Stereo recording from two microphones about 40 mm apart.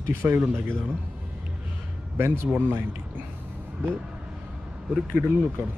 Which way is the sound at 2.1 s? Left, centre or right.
Right.